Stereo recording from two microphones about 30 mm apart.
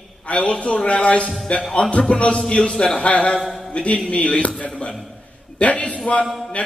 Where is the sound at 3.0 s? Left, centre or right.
Left.